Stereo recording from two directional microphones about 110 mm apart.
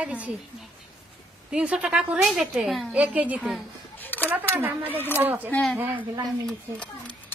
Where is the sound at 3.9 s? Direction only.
15° left (ahead or behind).